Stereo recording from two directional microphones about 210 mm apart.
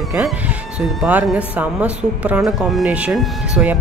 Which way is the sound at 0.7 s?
5° right (ahead or behind).